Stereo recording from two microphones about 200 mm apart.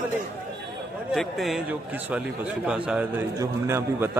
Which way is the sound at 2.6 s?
5° right (ahead or behind).